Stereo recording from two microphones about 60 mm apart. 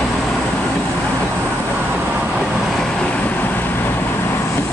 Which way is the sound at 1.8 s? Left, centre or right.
Right.